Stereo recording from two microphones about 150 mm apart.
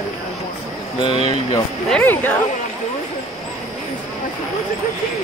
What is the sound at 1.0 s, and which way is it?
Speech, 35° left (ahead or behind).